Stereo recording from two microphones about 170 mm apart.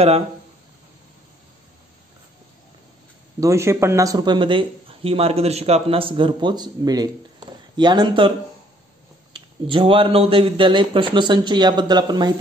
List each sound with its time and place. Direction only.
3.3 s speech: 15° right (ahead or behind)
9.3 s speech: 30° right (ahead or behind)